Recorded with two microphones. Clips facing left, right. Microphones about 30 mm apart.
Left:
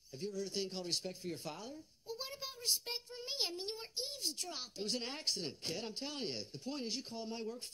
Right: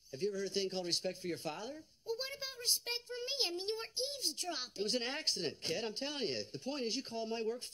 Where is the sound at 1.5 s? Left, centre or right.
Right.